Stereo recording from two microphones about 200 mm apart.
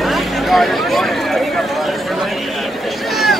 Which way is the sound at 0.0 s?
Centre (ahead or behind).